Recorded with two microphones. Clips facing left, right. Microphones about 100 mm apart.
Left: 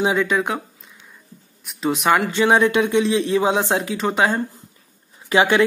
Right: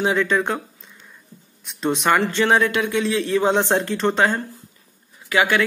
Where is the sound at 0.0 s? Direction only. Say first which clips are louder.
Even; 15° left (ahead or behind).